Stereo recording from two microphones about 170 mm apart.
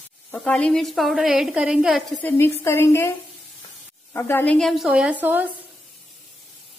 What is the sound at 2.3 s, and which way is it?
A woman's voice, 15° left (ahead or behind).